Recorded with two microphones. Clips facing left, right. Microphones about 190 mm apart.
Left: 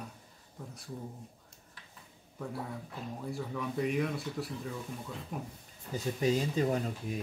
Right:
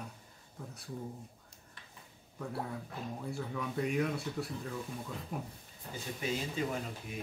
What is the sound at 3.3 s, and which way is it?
Speech, centre (ahead or behind).